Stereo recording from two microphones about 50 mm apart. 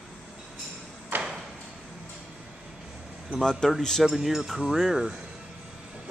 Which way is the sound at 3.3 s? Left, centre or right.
Centre.